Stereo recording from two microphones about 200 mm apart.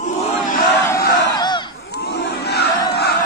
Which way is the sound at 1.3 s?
20° left (ahead or behind).